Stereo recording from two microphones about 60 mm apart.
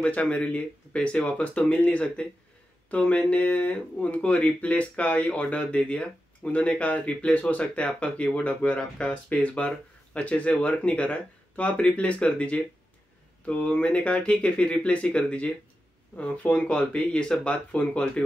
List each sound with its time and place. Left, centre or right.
0.0 s speech: left
13.5 s speech: left